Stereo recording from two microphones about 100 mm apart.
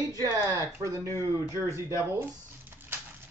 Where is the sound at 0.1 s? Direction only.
35° right (ahead or behind).